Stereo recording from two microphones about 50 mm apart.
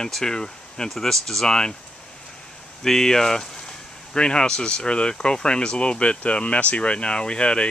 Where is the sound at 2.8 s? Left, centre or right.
Centre.